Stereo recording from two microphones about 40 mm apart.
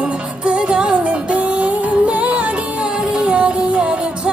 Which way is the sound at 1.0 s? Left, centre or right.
Right.